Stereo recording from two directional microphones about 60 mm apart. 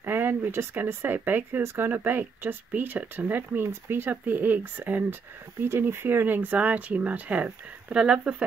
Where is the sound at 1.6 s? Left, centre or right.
Right.